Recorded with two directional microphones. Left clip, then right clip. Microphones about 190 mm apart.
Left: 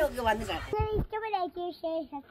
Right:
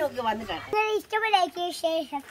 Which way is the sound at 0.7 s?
15° right (ahead or behind).